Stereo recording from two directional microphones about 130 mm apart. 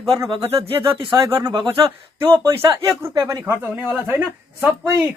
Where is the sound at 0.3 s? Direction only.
30° right (ahead or behind).